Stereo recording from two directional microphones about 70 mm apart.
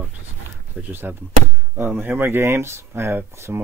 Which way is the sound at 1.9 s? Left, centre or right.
Right.